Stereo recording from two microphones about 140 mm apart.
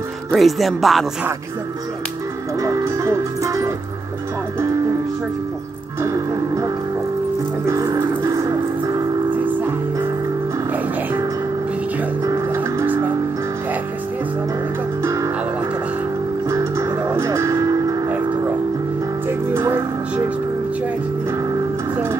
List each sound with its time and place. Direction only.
0.3 s speech: centre (ahead or behind)
2.6 s music: 25° right (ahead or behind)
6.0 s music: 25° right (ahead or behind)
12.3 s music: 20° right (ahead or behind)
15.0 s music: 20° right (ahead or behind)
16.4 s music: 20° right (ahead or behind)
19.2 s music: 15° right (ahead or behind)